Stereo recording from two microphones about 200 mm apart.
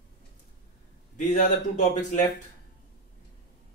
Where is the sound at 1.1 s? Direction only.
35° left (ahead or behind).